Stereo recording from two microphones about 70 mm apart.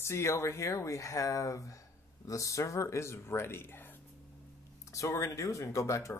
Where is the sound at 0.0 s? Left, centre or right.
Left.